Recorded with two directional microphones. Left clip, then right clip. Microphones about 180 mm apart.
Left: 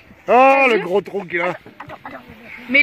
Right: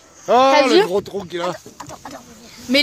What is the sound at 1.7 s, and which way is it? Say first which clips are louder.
Chicken: left 1 dB; 30° right (ahead or behind).